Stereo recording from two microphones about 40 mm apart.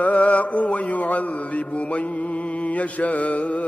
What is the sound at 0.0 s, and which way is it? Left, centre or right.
Mantra, left.